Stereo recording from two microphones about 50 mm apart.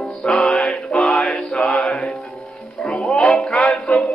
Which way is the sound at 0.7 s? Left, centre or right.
Left.